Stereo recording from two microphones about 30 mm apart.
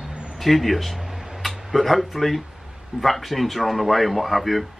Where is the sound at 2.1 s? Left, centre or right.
Centre.